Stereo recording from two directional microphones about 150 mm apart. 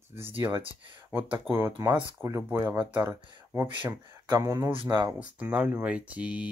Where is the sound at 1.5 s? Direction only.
5° left (ahead or behind).